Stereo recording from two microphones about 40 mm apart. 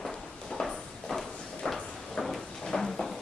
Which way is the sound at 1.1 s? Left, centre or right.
Centre.